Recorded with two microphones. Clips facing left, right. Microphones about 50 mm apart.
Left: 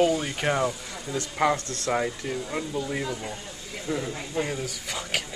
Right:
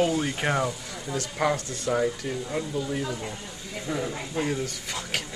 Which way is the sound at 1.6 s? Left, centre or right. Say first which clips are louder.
Even; left.